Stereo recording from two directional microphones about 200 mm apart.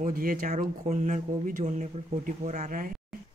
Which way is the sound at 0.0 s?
45° right (ahead or behind).